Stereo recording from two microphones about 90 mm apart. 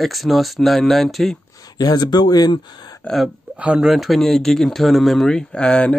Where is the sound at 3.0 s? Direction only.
Centre (ahead or behind).